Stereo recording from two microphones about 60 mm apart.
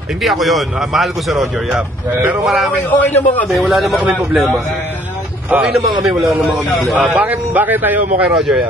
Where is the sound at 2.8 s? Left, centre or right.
Left.